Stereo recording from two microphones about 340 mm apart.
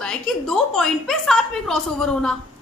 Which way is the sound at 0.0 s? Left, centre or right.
Centre.